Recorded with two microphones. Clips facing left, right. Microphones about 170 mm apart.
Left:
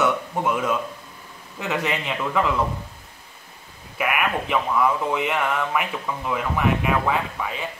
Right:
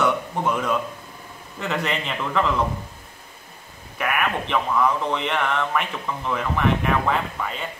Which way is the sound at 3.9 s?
5° left (ahead or behind).